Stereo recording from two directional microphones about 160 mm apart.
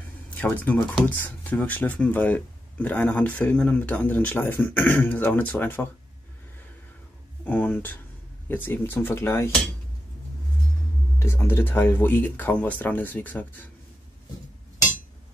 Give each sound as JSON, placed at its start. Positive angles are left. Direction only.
{"t": 0.3, "sound": "speech", "side_deg": 10}
{"t": 7.4, "sound": "speech", "side_deg": 10}
{"t": 11.1, "sound": "speech", "side_deg": 15}